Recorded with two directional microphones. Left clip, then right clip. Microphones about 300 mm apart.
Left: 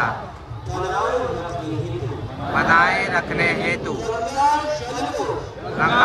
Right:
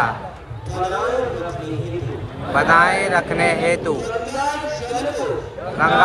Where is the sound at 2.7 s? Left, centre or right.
Centre.